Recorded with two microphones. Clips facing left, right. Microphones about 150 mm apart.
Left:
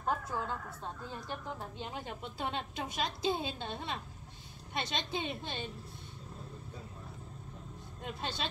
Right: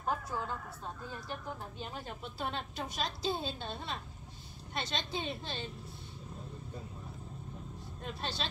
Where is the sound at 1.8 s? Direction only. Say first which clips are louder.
Left 1 dB; 15° left (ahead or behind).